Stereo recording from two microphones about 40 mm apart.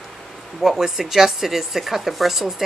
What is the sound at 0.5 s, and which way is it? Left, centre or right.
Speech, centre.